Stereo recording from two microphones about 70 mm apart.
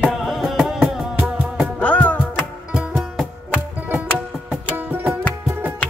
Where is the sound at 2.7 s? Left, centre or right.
Centre.